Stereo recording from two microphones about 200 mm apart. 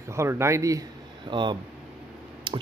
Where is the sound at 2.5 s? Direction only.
25° right (ahead or behind).